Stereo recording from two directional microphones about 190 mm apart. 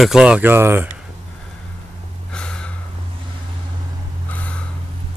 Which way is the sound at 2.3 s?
5° left (ahead or behind).